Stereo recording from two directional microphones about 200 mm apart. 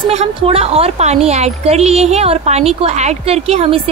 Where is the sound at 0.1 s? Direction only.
30° right (ahead or behind).